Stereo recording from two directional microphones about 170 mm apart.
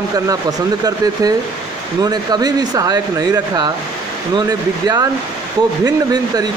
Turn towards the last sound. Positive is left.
turn(degrees=-25)  # may be behind; listen again after turning